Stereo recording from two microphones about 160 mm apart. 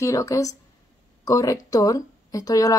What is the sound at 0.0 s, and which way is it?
Speech, 20° left (ahead or behind).